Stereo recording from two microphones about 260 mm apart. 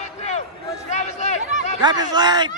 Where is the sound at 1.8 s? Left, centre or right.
Centre.